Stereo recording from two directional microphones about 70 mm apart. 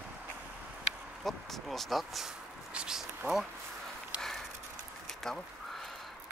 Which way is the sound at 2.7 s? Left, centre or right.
Centre.